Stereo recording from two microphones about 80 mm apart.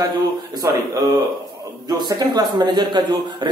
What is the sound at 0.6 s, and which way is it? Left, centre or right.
Speech, right.